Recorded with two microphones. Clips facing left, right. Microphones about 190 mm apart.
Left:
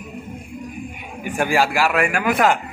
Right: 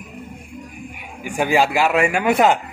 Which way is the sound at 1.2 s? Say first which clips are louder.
Right 1 dB; 15° right (ahead or behind).